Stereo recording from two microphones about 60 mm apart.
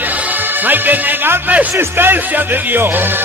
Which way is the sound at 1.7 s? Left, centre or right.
Right.